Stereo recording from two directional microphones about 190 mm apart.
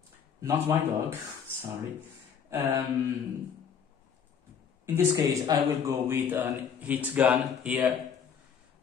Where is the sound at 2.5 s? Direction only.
15° right (ahead or behind).